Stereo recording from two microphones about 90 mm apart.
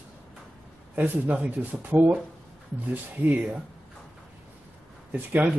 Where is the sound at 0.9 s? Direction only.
20° right (ahead or behind).